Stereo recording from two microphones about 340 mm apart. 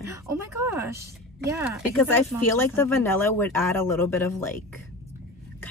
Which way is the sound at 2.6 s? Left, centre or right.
Centre.